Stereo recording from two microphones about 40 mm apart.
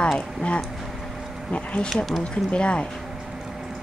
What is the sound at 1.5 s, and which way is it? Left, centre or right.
A woman's voice, left.